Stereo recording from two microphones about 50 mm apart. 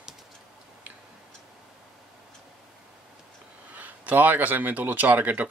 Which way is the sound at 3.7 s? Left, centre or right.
Right.